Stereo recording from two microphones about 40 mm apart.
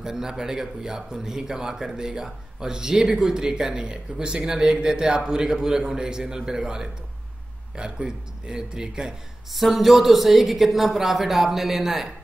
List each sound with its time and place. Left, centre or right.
0.0 s speech: centre
9.5 s a woman's voice: centre